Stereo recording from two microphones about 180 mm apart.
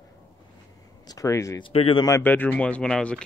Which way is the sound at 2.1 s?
10° left (ahead or behind).